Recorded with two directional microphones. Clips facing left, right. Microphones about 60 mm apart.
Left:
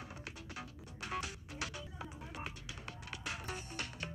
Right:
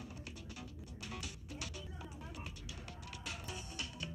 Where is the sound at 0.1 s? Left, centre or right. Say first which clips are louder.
Left 2 dB; left.